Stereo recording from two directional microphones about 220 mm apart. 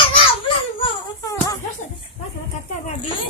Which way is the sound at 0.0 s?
25° left (ahead or behind).